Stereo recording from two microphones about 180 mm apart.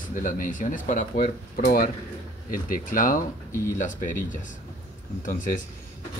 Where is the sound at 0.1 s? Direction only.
45° left (ahead or behind).